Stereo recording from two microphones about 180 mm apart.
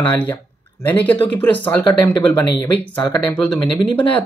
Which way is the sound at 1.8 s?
25° left (ahead or behind).